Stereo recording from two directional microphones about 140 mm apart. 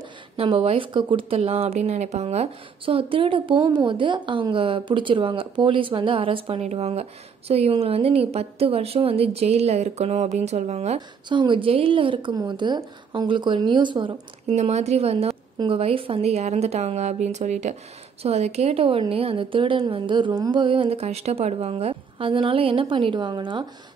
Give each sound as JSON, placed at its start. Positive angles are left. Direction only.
{"t": 0.4, "sound": "speech", "side_deg": -40}
{"t": 11.0, "sound": "a woman's voice", "side_deg": -35}
{"t": 14.5, "sound": "a woman's voice", "side_deg": -50}